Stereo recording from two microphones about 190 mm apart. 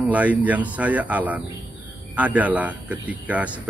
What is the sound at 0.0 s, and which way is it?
Speech, 10° right (ahead or behind).